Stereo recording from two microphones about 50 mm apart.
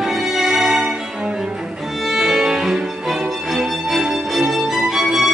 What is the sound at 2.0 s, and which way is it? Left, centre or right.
Music, centre.